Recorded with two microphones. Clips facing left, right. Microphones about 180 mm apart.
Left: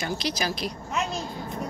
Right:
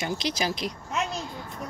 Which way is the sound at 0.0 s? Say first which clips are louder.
Even; 20° right (ahead or behind).